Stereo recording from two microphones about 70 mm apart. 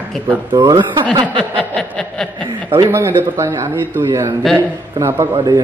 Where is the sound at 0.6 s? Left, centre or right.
Right.